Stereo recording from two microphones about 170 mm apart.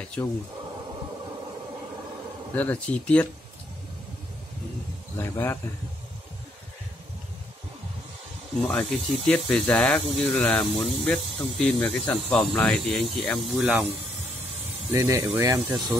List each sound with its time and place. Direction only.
0.0 s speech: 5° left (ahead or behind)
2.5 s speech: 10° left (ahead or behind)
5.1 s speech: 15° left (ahead or behind)
8.6 s speech: 5° left (ahead or behind)
14.9 s speech: 20° right (ahead or behind)